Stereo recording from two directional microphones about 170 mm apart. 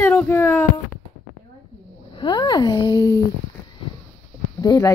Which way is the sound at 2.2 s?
25° left (ahead or behind).